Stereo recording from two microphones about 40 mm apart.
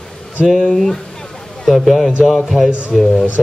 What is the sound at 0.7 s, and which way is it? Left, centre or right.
Speech, centre.